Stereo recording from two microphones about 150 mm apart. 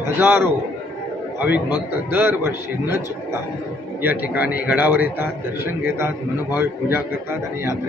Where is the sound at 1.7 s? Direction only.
15° right (ahead or behind).